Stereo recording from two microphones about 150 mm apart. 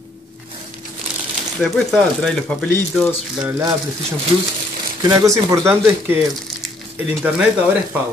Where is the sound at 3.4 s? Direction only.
15° right (ahead or behind).